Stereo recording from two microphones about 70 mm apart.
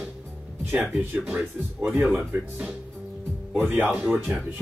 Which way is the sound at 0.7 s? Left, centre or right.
Right.